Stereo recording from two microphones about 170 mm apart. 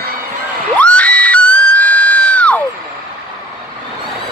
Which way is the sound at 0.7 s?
5° left (ahead or behind).